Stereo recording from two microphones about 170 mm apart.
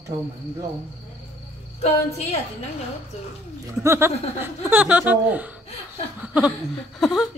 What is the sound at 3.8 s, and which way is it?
Speech, 15° right (ahead or behind).